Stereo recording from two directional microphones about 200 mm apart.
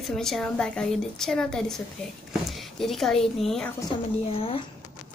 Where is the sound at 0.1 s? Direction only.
Centre (ahead or behind).